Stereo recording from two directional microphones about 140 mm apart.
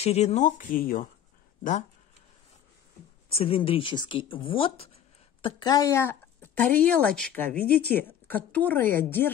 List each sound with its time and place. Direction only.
0.0 s speech: 50° left (ahead or behind); by 1.0 s 85° left
1.6 s speech: 65° left (ahead or behind)
3.3 s speech: 40° left (ahead or behind)
5.4 s speech: 30° left (ahead or behind)